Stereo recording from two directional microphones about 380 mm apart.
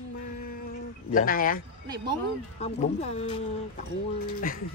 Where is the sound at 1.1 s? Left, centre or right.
Left.